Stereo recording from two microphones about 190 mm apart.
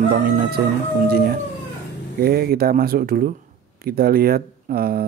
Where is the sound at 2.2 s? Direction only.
55° right (ahead or behind).